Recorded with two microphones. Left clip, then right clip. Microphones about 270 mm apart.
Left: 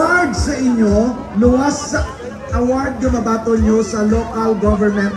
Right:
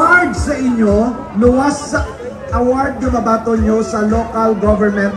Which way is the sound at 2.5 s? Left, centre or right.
Centre.